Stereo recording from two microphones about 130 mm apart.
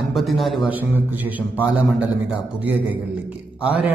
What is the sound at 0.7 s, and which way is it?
Speech, 15° right (ahead or behind).